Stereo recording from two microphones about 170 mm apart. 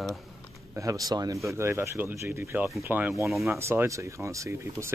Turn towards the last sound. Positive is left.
turn(degrees=-15)  # may be behind; listen again after turning